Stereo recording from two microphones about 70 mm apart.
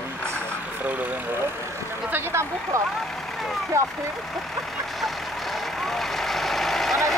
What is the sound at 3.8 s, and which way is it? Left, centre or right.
Vehicle, right.